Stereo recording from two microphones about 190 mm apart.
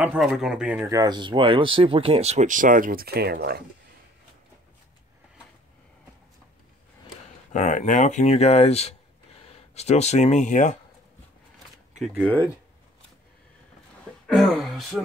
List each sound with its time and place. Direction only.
0.0 s speech: 5° right (ahead or behind); by 3.6 s 55° right (ahead or behind)
7.5 s speech: 40° left (ahead or behind)
12.0 s speech: centre (ahead or behind)
14.2 s speech: centre (ahead or behind)